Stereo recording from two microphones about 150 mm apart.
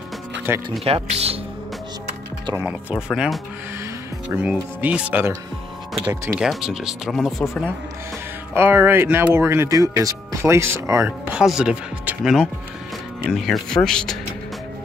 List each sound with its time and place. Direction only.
0.5 s speech: 15° right (ahead or behind)
0.8 s speech: 40° right (ahead or behind)
2.5 s speech: 10° right (ahead or behind)
6.3 s speech: 5° right (ahead or behind)
8.5 s speech: 15° right (ahead or behind); by 14.1 s 5° left (ahead or behind)